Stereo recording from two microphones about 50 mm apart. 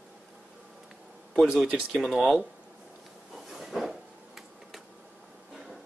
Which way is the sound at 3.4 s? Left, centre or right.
Centre.